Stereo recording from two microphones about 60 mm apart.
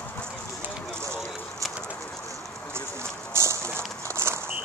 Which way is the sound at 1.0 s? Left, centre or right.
Right.